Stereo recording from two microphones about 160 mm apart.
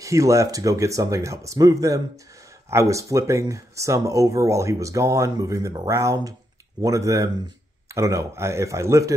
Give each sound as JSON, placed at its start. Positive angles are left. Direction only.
{"t": 0.0, "sound": "speech", "side_deg": -20}